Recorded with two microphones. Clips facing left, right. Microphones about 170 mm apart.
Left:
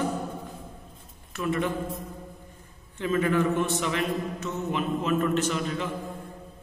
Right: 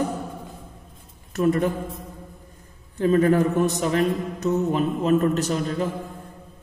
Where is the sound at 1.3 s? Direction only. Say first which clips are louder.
Right 7 dB; 40° right (ahead or behind).